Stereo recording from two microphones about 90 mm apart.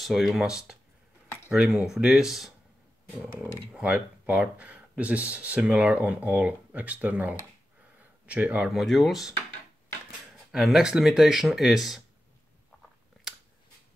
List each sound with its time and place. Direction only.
0.0 s speech: centre (ahead or behind)
8.6 s speech: centre (ahead or behind)
10.5 s speech: 5° right (ahead or behind)